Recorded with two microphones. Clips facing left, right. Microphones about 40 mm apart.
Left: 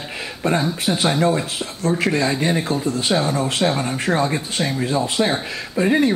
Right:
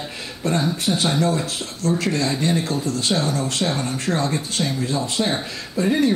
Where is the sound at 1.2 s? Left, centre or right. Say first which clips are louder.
Left 3 dB; centre.